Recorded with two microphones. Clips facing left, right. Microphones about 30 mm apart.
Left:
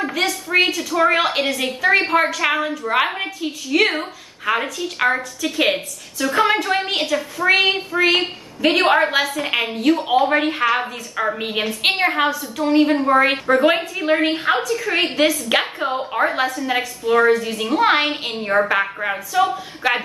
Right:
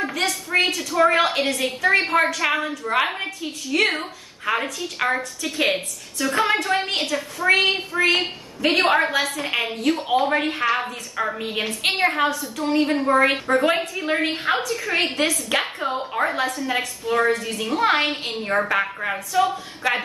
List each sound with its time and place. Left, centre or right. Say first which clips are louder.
0.5 s a woman's voice: left 3 dB; left
0.8 s a woman's voice: left 1 dB; centre
11.3 s a woman's voice: left 3 dB; left
11.9 s a woman's voice: left 1 dB; centre
15.2 s a woman's voice: left 4 dB; centre